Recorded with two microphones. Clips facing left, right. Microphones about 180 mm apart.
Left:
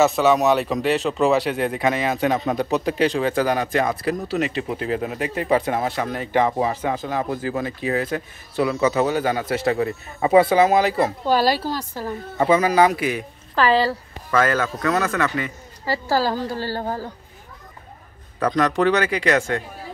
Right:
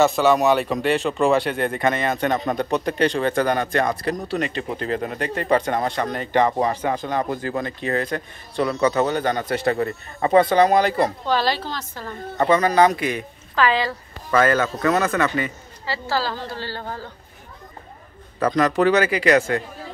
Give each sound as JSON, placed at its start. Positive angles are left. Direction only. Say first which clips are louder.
{"t": 0.0, "sound": "speech", "louder": "even", "side_deg": 0}
{"t": 13.6, "sound": "speech", "louder": "left 2 dB", "side_deg": 35}
{"t": 14.4, "sound": "speech", "louder": "right 2 dB", "side_deg": 0}
{"t": 15.8, "sound": "a woman's voice", "louder": "left 4 dB", "side_deg": 45}
{"t": 18.4, "sound": "speech", "louder": "right 1 dB", "side_deg": -5}